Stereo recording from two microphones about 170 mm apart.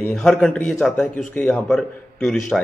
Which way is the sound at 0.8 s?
Centre (ahead or behind).